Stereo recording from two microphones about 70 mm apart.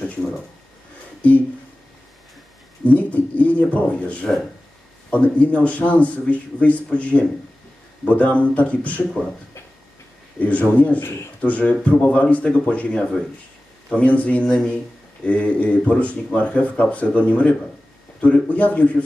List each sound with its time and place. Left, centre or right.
2.8 s a man's voice: left
10.4 s a man's voice: left